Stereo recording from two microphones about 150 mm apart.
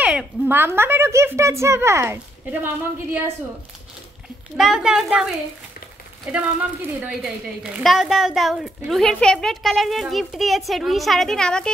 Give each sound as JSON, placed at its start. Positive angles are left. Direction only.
{"t": 0.0, "sound": "a woman's voice", "side_deg": -10}
{"t": 4.6, "sound": "a woman's voice", "side_deg": -5}